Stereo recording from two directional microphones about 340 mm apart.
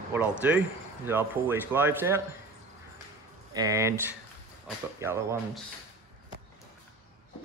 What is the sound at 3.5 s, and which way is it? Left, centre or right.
Speech, centre.